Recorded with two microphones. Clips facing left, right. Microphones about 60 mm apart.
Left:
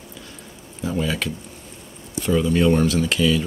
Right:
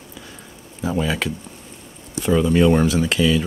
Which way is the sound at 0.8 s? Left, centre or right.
Centre.